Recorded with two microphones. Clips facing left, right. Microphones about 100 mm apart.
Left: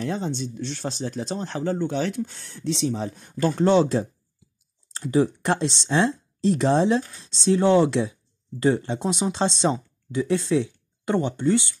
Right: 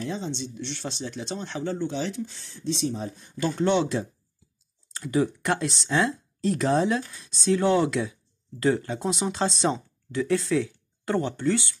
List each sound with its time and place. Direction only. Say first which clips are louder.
0.0 s speech: left 4 dB; 50° left (ahead or behind); by 3.1 s 85° left
3.2 s speech: left 4 dB; 50° left (ahead or behind); by 11.7 s 20° left (ahead or behind)